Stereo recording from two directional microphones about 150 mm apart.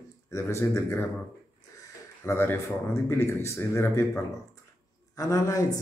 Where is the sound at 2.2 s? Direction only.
15° left (ahead or behind).